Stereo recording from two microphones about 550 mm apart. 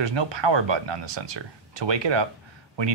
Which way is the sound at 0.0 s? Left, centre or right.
Right.